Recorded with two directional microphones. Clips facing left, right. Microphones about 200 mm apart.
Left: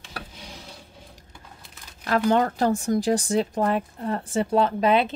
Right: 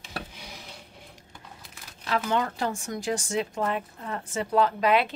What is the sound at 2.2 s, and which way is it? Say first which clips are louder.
Speech: left 9 dB; 40° left (ahead or behind).